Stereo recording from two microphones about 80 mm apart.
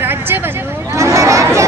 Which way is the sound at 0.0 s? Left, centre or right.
Right.